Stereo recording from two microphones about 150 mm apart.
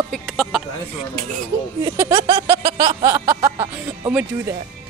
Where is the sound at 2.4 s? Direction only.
20° right (ahead or behind).